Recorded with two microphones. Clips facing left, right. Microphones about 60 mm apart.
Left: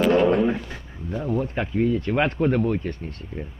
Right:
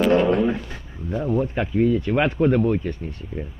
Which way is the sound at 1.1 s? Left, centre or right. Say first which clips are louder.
Right 3 dB; centre.